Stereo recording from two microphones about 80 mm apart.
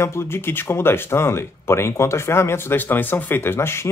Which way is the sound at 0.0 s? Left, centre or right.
Left.